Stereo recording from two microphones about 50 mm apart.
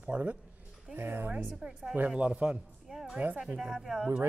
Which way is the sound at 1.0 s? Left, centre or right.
Right.